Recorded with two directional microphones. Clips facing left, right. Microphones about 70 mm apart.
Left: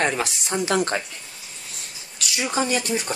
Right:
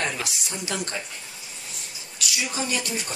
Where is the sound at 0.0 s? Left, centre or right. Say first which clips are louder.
Left 6 dB; left.